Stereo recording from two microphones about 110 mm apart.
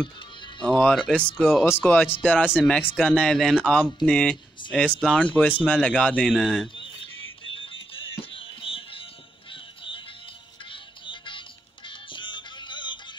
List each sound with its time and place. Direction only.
0.6 s a man's voice: 5° left (ahead or behind)
1.7 s a man's voice: 20° left (ahead or behind); by 6.7 s centre (ahead or behind)
7.5 s music: 55° left (ahead or behind)